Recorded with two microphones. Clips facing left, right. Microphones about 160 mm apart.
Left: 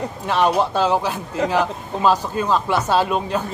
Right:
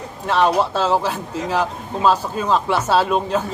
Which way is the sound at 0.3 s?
10° left (ahead or behind).